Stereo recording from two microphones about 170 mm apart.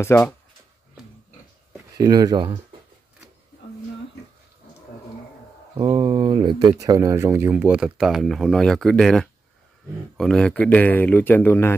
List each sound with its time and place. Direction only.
0.1 s speech: 15° left (ahead or behind)
2.0 s speech: 20° right (ahead or behind)
5.8 s speech: 30° right (ahead or behind); by 11.7 s 10° left (ahead or behind)